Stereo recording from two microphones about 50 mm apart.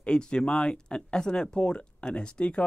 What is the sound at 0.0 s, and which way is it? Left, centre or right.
Speech, centre.